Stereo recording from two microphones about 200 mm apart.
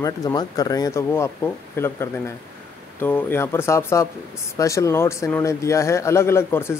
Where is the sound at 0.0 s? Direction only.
20° left (ahead or behind).